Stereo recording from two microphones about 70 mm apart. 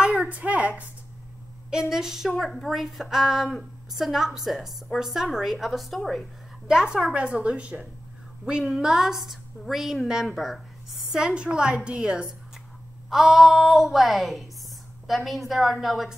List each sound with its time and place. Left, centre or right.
0.0 s a sound: centre
1.7 s a woman's voice: centre
6.7 s a woman's voice: centre